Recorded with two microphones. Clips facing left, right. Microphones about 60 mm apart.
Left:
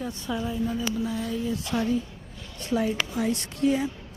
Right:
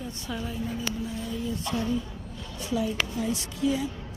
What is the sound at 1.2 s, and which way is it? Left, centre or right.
Speech, left.